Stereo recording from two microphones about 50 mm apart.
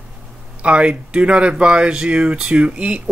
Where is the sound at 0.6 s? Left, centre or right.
Right.